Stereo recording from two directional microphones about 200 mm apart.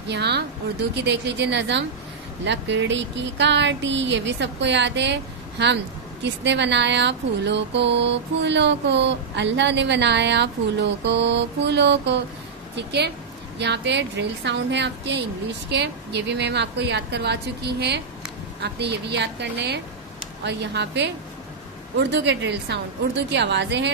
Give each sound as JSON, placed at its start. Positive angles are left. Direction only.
{"t": 0.1, "sound": "speech", "side_deg": -55}
{"t": 22.1, "sound": "speech", "side_deg": -60}